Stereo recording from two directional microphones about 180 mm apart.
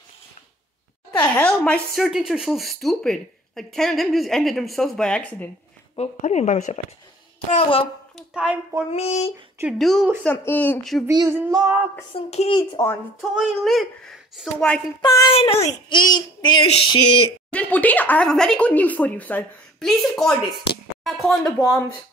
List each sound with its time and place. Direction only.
1.1 s speech: 10° left (ahead or behind)
5.9 s speech: 40° left (ahead or behind)
8.2 s speech: 5° right (ahead or behind)
8.9 s speech: 35° left (ahead or behind)
9.6 s speech: centre (ahead or behind)
11.1 s child singing: 15° right (ahead or behind)
12.1 s speech: 35° left (ahead or behind)
12.5 s speech: 20° left (ahead or behind)
13.3 s speech: 5° right (ahead or behind)
15.0 s speech: 20° left (ahead or behind)
15.3 s speech: 35° left (ahead or behind)
17.5 s speech: 10° left (ahead or behind)
21.0 s a sound: centre (ahead or behind)